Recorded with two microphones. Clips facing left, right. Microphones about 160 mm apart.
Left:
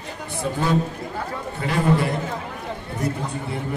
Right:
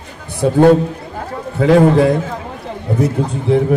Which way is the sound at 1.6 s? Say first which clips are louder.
Right 12 dB; 90° right.